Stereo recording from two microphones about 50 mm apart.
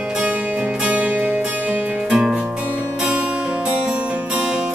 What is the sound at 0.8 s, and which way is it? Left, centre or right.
Music, right.